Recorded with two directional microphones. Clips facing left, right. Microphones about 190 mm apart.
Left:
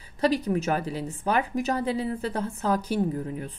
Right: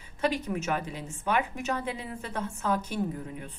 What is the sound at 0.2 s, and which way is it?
Speech, 35° left (ahead or behind).